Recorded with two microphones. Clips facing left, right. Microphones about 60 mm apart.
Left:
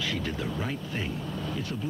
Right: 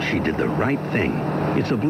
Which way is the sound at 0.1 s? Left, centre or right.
Right.